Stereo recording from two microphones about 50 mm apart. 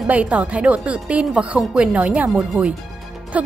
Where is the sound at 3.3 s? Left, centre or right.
Right.